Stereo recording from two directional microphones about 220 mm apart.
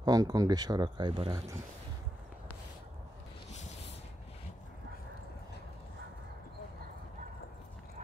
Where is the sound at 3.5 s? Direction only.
30° left (ahead or behind).